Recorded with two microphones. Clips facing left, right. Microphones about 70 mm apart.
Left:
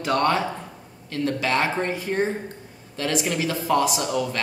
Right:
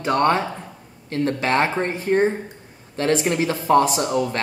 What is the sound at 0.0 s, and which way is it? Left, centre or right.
Speech, right.